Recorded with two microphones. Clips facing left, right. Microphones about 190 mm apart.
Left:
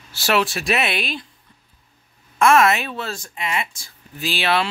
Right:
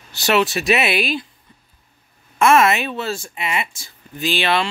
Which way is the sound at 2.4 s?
Centre (ahead or behind).